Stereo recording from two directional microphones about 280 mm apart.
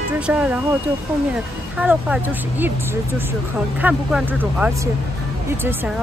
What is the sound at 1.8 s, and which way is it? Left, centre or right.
Speech, centre.